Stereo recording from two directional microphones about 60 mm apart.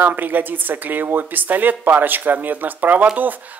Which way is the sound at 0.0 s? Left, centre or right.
Right.